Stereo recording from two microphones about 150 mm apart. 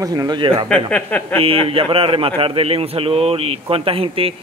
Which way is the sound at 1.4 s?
40° right (ahead or behind).